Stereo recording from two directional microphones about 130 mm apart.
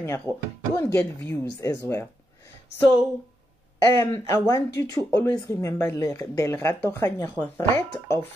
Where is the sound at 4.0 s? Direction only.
25° left (ahead or behind).